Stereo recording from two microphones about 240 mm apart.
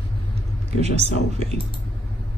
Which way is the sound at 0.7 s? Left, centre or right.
Right.